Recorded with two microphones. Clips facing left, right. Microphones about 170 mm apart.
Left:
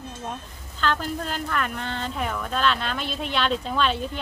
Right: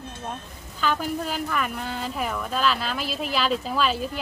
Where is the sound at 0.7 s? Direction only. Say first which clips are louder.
Right 1 dB; 10° right (ahead or behind).